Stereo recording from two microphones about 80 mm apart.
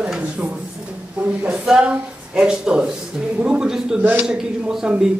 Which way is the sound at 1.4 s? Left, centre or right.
Centre.